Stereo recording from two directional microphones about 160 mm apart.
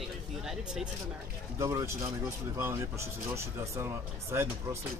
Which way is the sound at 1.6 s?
20° right (ahead or behind).